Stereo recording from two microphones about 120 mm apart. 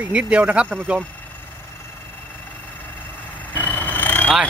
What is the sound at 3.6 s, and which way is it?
Vehicle, 15° left (ahead or behind).